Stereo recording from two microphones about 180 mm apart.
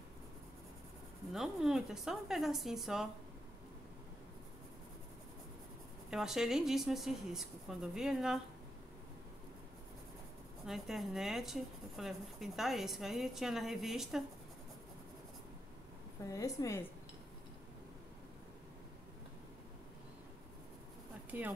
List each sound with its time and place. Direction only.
1.3 s speech: centre (ahead or behind)
6.0 s speech: centre (ahead or behind)
10.7 s speech: centre (ahead or behind)
16.3 s a woman's voice: 15° left (ahead or behind)
21.3 s speech: 10° right (ahead or behind)